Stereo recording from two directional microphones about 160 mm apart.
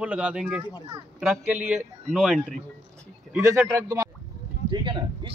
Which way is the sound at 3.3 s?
15° right (ahead or behind).